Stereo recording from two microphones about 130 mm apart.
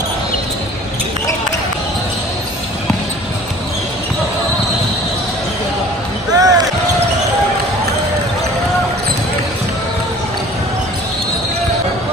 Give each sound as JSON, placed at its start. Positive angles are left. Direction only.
{"t": 6.3, "sound": "basketball bounce", "side_deg": -30}